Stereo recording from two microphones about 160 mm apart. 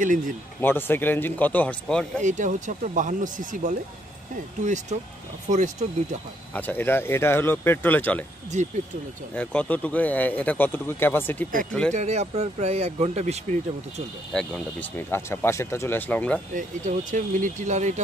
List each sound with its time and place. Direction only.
0.6 s speech: 15° left (ahead or behind)
2.2 s speech: 50° right (ahead or behind)
6.5 s speech: 10° left (ahead or behind)
8.5 s speech: 45° right (ahead or behind)
9.3 s speech: 10° left (ahead or behind)
11.9 s speech: 45° right (ahead or behind)
14.3 s speech: 10° left (ahead or behind)
16.5 s speech: 55° right (ahead or behind)